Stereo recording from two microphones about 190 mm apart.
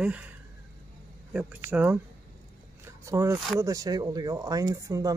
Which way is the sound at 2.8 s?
15° right (ahead or behind).